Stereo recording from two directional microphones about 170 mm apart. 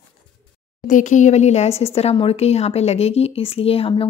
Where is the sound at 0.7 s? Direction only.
50° left (ahead or behind).